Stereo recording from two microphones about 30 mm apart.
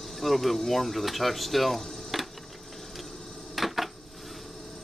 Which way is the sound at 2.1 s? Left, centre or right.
Centre.